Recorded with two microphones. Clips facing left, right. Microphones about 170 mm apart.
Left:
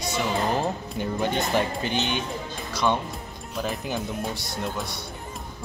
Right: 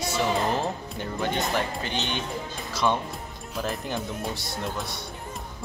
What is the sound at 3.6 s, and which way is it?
Speech, centre (ahead or behind).